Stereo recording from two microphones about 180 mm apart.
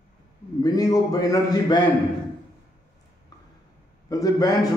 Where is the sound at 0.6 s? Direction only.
20° left (ahead or behind).